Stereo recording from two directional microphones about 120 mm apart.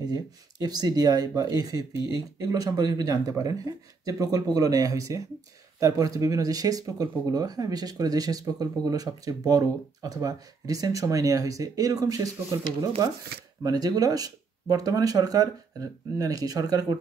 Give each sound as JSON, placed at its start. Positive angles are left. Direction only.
{"t": 0.0, "sound": "speech", "side_deg": -35}